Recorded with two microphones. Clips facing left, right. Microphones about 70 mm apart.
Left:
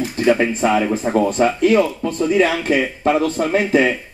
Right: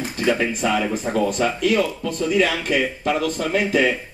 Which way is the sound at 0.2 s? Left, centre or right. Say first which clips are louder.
Left 5 dB; left.